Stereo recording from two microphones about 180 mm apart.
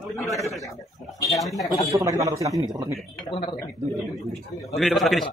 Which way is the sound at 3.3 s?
25° left (ahead or behind).